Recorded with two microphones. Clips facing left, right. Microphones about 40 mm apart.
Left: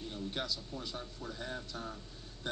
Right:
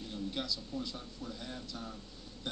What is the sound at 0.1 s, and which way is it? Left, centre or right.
Speech, left.